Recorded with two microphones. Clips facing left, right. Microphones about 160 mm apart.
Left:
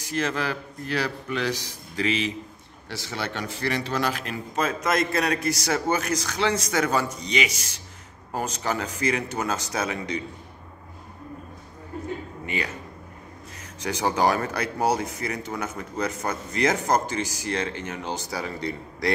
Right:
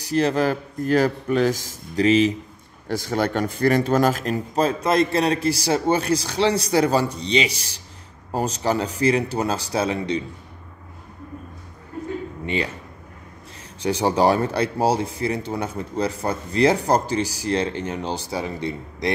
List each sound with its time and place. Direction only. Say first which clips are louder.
0.0 s a man's voice: right 7 dB; 35° right (ahead or behind)
12.4 s speech: right 5 dB; 30° right (ahead or behind)
13.7 s speech: right 5 dB; 30° right (ahead or behind)